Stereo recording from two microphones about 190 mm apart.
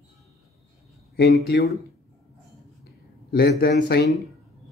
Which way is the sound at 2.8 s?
55° left (ahead or behind).